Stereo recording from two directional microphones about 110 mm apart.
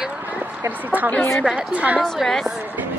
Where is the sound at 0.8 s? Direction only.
15° right (ahead or behind).